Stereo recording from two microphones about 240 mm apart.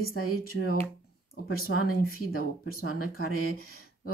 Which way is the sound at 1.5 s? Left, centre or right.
Left.